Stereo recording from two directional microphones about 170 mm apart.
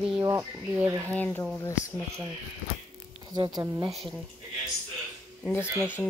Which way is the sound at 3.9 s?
Centre (ahead or behind).